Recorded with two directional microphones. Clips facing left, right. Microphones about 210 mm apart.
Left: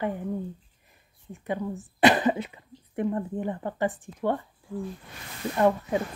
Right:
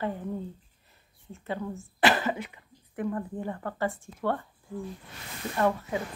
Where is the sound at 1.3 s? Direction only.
15° left (ahead or behind).